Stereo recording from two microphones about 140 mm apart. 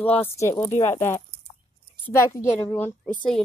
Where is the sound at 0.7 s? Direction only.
55° left (ahead or behind).